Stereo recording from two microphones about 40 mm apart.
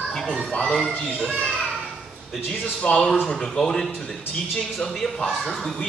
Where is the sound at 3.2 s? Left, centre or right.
Left.